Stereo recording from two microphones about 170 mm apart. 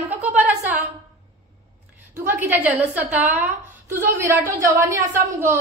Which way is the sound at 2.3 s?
15° right (ahead or behind).